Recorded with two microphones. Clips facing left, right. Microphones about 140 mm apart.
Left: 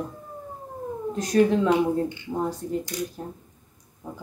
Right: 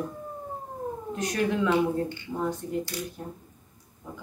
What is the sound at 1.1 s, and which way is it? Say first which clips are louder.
Speech: left 7 dB; 35° left (ahead or behind).